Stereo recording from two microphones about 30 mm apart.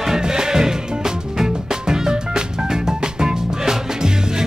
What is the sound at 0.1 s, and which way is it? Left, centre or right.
Music, centre.